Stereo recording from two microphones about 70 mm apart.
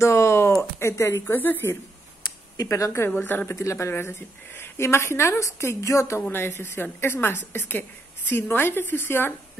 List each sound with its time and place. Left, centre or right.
0.0 s a sound: left
1.2 s speech: left
2.5 s speech: left
3.2 s a woman's voice: left
3.5 s a woman's voice: left